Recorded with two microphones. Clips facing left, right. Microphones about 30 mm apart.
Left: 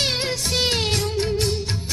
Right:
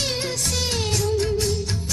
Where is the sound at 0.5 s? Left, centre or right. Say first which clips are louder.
Left 6 dB; left.